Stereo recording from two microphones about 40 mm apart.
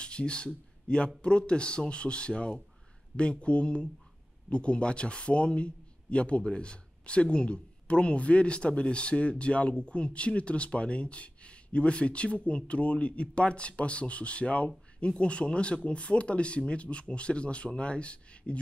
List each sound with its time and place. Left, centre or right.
0.0 s speech: left